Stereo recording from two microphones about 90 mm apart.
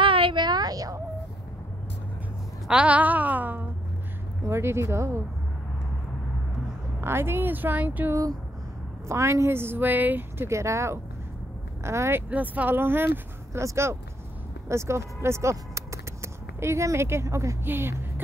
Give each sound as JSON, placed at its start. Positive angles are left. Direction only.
{"t": 0.0, "sound": "a sound", "side_deg": -70}
{"t": 2.7, "sound": "a woman's voice", "side_deg": -15}
{"t": 7.0, "sound": "a woman's voice", "side_deg": -25}
{"t": 8.1, "sound": "a woman's voice", "side_deg": -40}
{"t": 12.3, "sound": "a woman's voice", "side_deg": -15}